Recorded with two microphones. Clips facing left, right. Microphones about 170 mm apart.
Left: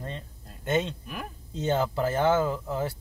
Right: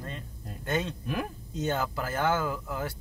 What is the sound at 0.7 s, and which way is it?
Speech, 25° left (ahead or behind).